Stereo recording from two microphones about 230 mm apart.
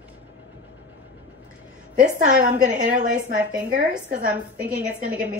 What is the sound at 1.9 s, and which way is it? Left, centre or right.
A woman's voice, right.